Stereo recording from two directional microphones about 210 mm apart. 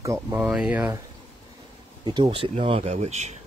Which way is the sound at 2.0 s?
20° right (ahead or behind).